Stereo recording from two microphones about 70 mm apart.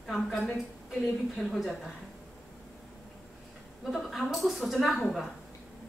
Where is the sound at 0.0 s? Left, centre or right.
Centre.